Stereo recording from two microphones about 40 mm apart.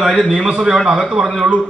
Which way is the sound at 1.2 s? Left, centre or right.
Centre.